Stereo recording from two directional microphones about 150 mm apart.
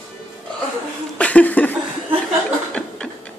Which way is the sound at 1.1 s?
10° left (ahead or behind).